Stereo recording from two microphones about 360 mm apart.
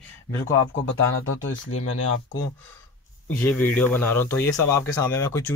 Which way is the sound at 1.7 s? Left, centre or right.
Left.